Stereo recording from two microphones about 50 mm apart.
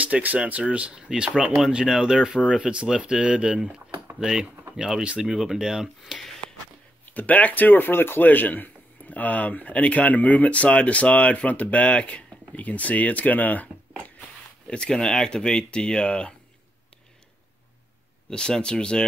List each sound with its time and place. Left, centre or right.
0.0 s speech: right; by 5.9 s centre
6.0 s speech: centre
7.1 s a man's voice: left
14.7 s speech: centre
18.3 s speech: centre